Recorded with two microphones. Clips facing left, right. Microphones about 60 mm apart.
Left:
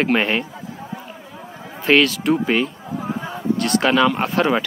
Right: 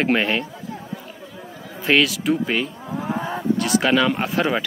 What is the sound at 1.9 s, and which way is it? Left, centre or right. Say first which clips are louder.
Speech: left 3 dB; centre.